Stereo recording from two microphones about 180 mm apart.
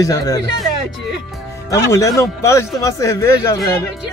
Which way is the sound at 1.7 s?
15° left (ahead or behind).